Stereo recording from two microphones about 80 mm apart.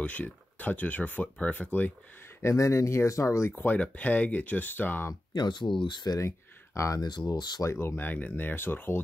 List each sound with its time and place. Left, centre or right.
0.0 s speech: centre
2.4 s speech: left
3.5 s speech: left
5.3 s speech: left
6.1 s speech: left
7.0 s speech: left
7.6 s speech: left